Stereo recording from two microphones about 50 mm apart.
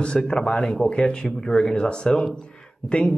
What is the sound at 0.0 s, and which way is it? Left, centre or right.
Speech, centre.